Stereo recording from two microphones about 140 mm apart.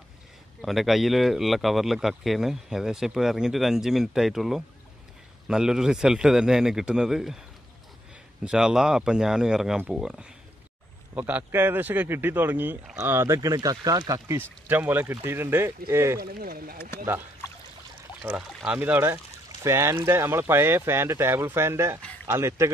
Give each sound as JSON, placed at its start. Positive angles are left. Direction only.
{"t": 0.6, "sound": "speech", "side_deg": 0}
{"t": 8.5, "sound": "speech", "side_deg": -5}
{"t": 16.2, "sound": "speech", "side_deg": -90}
{"t": 18.2, "sound": "speech", "side_deg": -10}